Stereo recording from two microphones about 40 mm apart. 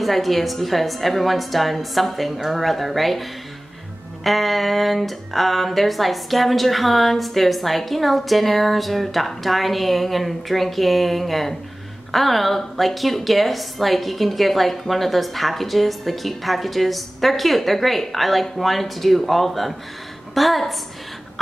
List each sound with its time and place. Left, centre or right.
0.0 s a woman's voice: centre